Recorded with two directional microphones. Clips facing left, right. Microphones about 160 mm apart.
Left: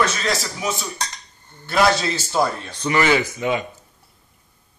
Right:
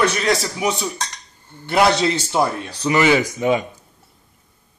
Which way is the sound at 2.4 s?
15° right (ahead or behind).